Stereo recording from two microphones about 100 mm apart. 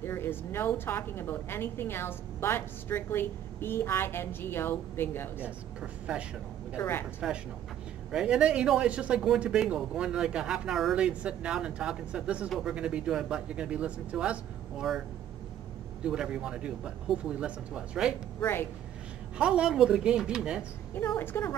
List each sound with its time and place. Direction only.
0.0 s a woman's voice: 25° left (ahead or behind)
5.4 s speech: 10° right (ahead or behind)
6.8 s a woman's voice: 25° left (ahead or behind)
8.1 s speech: 10° right (ahead or behind)
16.0 s speech: 10° right (ahead or behind)
18.4 s a woman's voice: 25° left (ahead or behind)
19.3 s speech: 10° right (ahead or behind)
21.2 s a woman's voice: 20° left (ahead or behind)